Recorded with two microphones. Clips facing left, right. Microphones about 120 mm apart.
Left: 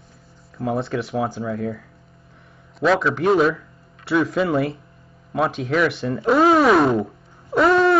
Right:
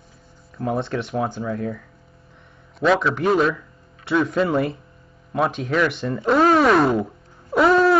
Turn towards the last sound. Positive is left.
turn(degrees=0)  # may be behind; listen again after turning